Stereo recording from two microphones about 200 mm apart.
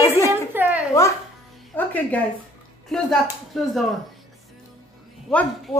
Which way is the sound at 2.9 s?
Centre (ahead or behind).